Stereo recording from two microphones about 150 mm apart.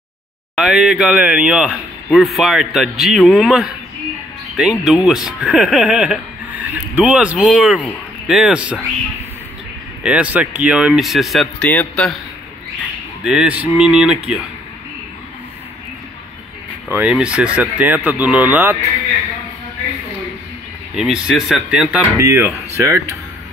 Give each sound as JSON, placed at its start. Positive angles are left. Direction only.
{"t": 0.6, "sound": "speech", "side_deg": -5}
{"t": 10.0, "sound": "speech", "side_deg": -10}
{"t": 11.6, "sound": "a man's voice", "side_deg": 10}
{"t": 13.2, "sound": "speech", "side_deg": -5}
{"t": 16.9, "sound": "speech", "side_deg": -10}
{"t": 20.9, "sound": "speech", "side_deg": -5}
{"t": 22.2, "sound": "speech", "side_deg": -20}